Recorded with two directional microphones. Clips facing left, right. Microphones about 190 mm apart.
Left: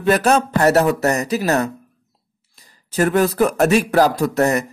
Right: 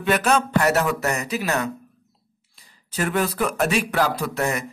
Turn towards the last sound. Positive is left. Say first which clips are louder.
# left 7 dB
turn(degrees=40)  # may be behind; listen again after turning